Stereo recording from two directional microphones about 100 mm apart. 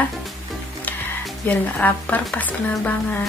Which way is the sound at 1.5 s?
15° left (ahead or behind).